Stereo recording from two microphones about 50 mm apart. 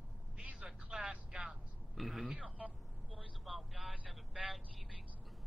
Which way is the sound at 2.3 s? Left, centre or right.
Right.